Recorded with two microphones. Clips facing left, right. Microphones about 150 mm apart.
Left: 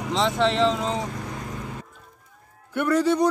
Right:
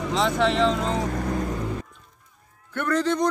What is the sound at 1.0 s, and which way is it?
Vehicle, 45° right (ahead or behind).